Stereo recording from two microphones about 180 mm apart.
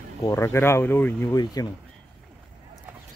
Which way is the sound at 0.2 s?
15° left (ahead or behind).